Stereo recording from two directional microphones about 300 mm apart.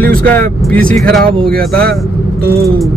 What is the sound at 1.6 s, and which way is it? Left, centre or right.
Speech, right.